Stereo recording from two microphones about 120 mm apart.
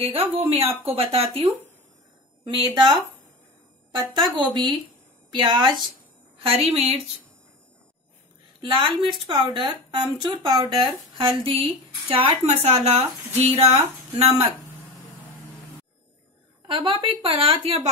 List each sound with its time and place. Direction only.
0.0 s speech: 50° right (ahead or behind)
2.4 s speech: 40° right (ahead or behind)
4.4 s speech: 40° right (ahead or behind)
6.3 s a woman's voice: 55° right (ahead or behind)
8.5 s speech: 45° right (ahead or behind)
12.6 s speech: 65° right (ahead or behind)
16.6 s speech: 45° right (ahead or behind)